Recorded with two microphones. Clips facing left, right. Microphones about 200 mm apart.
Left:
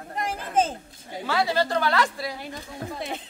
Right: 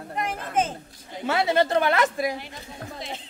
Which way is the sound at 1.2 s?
25° right (ahead or behind).